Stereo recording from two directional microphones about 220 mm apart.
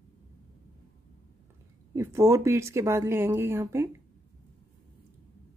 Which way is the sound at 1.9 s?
15° right (ahead or behind).